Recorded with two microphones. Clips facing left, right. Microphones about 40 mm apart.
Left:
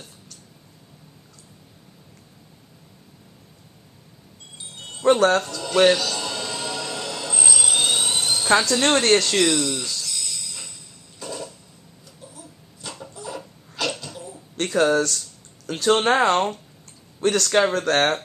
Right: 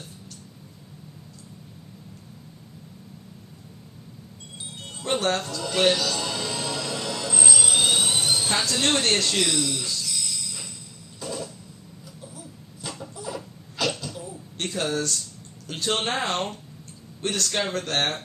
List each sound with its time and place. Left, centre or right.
4.7 s wind chime: centre
5.4 s speech: centre
5.9 s music: centre
9.4 s a sound: centre
14.6 s a man's voice: left